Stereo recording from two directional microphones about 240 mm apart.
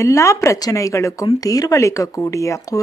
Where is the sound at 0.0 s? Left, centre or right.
Centre.